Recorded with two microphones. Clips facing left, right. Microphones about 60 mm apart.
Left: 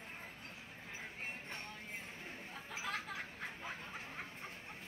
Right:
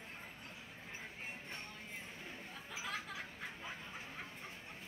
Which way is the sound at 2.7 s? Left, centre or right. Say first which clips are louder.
Left 2 dB; left.